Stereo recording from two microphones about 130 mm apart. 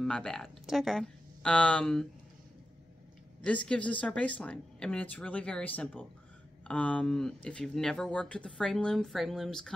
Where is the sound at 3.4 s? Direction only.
10° left (ahead or behind).